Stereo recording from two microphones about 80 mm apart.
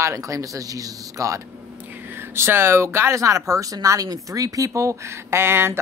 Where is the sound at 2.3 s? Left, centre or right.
Right.